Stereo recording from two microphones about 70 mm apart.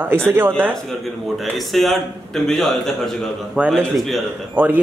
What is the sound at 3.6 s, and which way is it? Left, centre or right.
Speech, centre.